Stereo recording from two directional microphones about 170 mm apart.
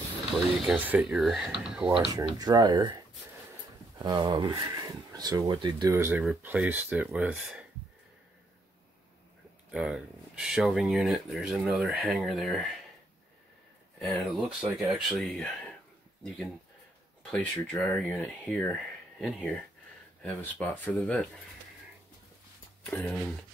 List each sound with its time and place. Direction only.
0.7 s speech: 10° right (ahead or behind)
2.3 s speech: 25° right (ahead or behind)
4.0 s speech: 25° right (ahead or behind)
5.9 s speech: 10° right (ahead or behind)
9.7 s speech: 5° right (ahead or behind)
13.9 s speech: centre (ahead or behind)
17.3 s speech: 5° left (ahead or behind)
22.8 s speech: 5° left (ahead or behind)